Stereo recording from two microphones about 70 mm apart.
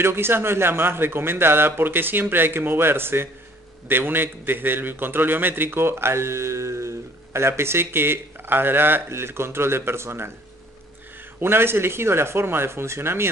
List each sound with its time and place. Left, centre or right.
0.0 s a man's voice: right
11.3 s a man's voice: right